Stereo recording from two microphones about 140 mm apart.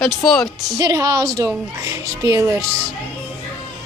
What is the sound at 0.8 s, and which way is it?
Speech, 25° right (ahead or behind).